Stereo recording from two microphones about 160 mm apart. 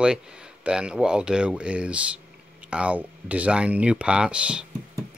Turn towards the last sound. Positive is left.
turn(degrees=-5)  # may be behind; listen again after turning